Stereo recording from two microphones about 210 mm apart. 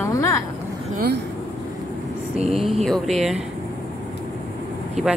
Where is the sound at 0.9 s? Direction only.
50° right (ahead or behind).